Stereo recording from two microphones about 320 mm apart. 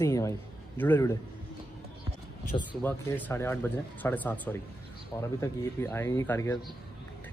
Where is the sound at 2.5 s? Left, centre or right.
Centre.